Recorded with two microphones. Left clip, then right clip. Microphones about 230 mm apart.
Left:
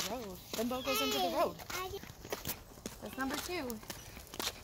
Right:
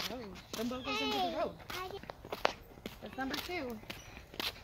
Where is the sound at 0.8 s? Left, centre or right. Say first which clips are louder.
Even; left.